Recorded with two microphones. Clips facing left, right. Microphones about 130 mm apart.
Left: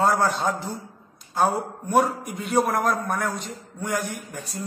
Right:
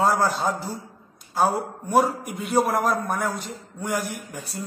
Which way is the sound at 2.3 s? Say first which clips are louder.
Even; centre (ahead or behind).